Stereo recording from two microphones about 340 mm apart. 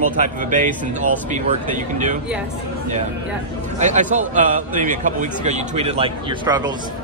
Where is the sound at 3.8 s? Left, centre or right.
Right.